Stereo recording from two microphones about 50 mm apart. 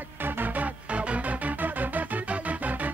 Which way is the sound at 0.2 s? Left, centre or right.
Right.